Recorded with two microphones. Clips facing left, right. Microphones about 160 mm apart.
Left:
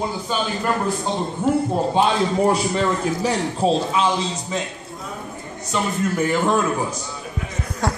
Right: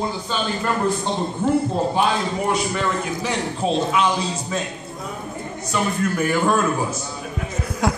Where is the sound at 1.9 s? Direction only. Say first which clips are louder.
Left 2 dB; 30° left (ahead or behind).